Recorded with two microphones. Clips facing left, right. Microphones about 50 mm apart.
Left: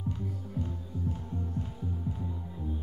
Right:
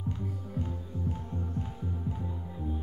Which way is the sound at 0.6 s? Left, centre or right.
Centre.